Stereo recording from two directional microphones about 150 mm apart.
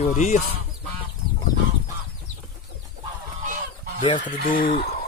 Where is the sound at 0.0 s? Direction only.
50° left (ahead or behind).